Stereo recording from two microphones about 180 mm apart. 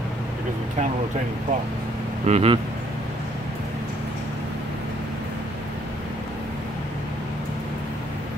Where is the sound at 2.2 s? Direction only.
35° right (ahead or behind).